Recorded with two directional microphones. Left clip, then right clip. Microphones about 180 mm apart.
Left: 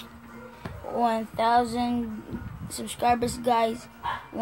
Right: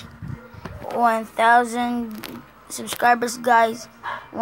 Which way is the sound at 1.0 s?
Centre (ahead or behind).